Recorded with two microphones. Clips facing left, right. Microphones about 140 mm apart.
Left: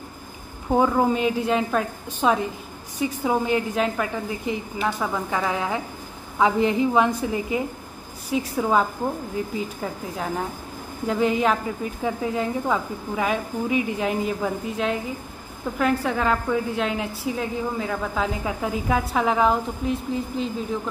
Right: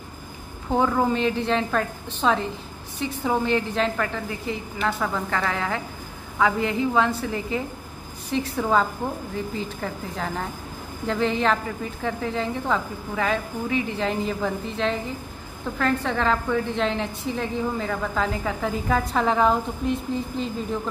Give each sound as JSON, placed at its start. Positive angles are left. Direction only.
{"t": 0.7, "sound": "a woman's voice", "side_deg": 10}